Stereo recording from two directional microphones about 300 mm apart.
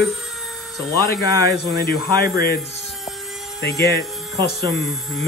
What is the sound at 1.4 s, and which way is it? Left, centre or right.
Speech, left.